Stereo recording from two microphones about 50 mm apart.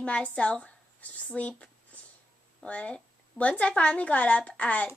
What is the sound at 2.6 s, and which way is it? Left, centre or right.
A woman's voice, left.